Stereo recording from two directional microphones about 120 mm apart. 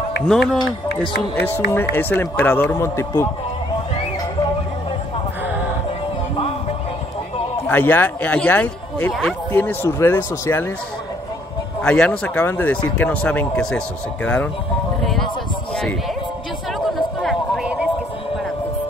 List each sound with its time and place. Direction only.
0.3 s speech: 5° left (ahead or behind)
1.3 s speech: 15° left (ahead or behind)
7.6 s speech: 15° left (ahead or behind)
11.8 s speech: 10° left (ahead or behind)
17.2 s a sound: 5° right (ahead or behind)